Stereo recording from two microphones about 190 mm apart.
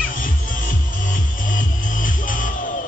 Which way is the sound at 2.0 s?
45° left (ahead or behind).